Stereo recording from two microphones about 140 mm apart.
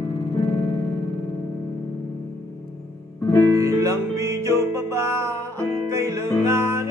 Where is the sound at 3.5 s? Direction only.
25° right (ahead or behind).